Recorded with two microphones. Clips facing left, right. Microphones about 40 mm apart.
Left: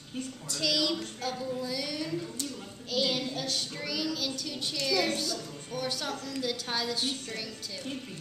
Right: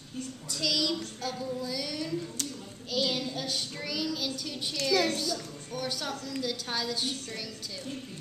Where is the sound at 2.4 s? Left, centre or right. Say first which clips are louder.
Even; right.